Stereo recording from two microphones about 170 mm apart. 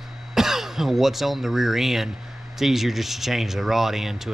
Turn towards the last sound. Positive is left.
turn(degrees=0)  # may be behind; listen again after turning